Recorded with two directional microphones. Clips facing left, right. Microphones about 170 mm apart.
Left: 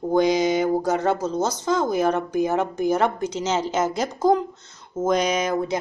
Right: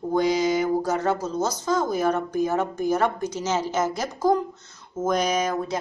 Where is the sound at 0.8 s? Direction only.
20° left (ahead or behind).